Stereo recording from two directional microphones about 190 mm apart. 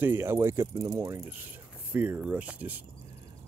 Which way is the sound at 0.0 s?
10° right (ahead or behind).